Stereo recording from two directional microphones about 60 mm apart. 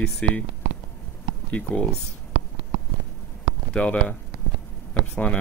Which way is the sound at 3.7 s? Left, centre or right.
Centre.